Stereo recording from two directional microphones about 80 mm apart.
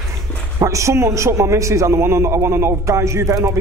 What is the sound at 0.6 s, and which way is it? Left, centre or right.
A man's voice, right.